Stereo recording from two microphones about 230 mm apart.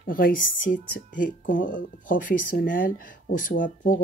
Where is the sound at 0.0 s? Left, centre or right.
Left.